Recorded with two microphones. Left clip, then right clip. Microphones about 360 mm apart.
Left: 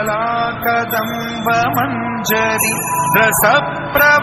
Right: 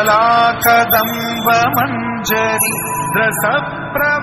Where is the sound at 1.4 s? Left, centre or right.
Centre.